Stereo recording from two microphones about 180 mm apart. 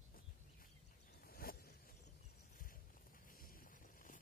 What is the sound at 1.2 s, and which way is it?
Zipper, 55° left (ahead or behind).